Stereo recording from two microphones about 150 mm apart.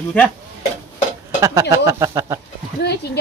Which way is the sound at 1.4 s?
20° right (ahead or behind).